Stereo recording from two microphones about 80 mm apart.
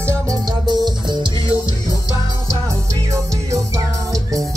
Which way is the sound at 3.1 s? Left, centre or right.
Right.